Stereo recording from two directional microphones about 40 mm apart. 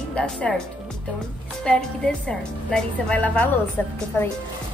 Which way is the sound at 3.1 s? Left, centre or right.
Left.